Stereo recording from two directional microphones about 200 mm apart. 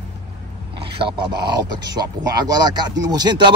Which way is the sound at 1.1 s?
20° right (ahead or behind).